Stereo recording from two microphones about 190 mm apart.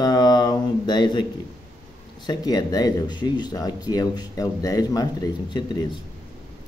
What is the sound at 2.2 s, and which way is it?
Speech, 20° left (ahead or behind).